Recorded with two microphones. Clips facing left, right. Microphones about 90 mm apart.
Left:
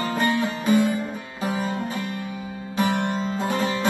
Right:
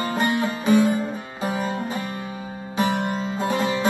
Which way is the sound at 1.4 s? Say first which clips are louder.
Even; 20° right (ahead or behind).